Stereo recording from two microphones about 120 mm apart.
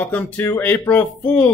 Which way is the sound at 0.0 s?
15° left (ahead or behind).